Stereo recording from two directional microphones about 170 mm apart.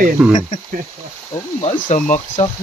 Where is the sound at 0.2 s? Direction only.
5° right (ahead or behind).